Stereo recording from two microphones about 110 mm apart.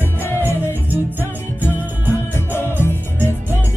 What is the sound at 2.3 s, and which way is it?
Music, 20° left (ahead or behind).